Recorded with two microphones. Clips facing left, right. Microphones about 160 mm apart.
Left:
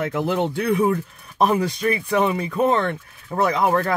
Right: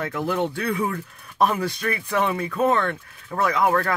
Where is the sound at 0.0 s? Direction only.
20° left (ahead or behind).